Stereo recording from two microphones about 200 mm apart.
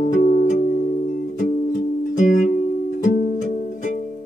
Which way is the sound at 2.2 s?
40° left (ahead or behind).